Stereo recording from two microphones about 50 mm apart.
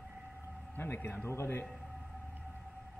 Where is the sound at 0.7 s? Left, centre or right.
Left.